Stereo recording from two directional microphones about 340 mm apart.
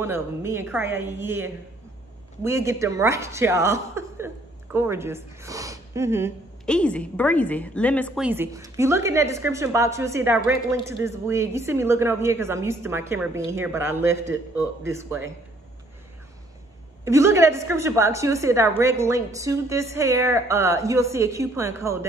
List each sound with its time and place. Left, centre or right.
0.0 s speech: centre
17.0 s speech: centre